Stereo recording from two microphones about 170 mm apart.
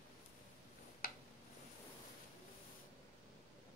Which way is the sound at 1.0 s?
60° left (ahead or behind).